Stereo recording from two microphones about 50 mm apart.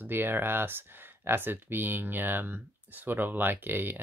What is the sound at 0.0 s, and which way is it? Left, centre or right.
Speech, right.